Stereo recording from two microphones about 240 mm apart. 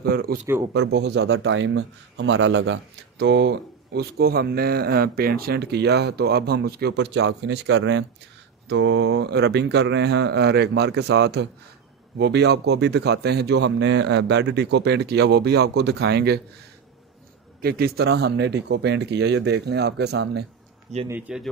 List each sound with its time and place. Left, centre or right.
0.0 s speech: right
17.6 s speech: right
21.1 s speech: centre